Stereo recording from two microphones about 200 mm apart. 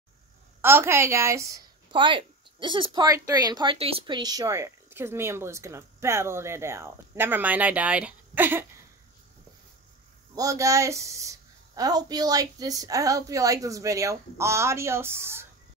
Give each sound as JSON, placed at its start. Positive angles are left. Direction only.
{"t": 0.6, "sound": "a woman's voice", "side_deg": -10}
{"t": 10.3, "sound": "a woman's voice", "side_deg": -15}